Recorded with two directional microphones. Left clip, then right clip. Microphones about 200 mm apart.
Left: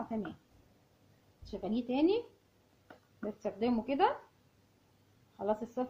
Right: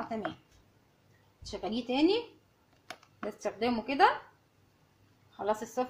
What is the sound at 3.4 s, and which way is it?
Speech, 5° left (ahead or behind).